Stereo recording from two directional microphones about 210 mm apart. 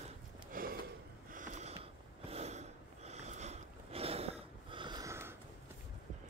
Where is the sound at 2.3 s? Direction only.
30° right (ahead or behind); by 5.3 s 15° right (ahead or behind).